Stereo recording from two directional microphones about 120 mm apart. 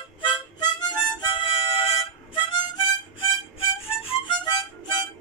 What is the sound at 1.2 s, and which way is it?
Music, 45° left (ahead or behind).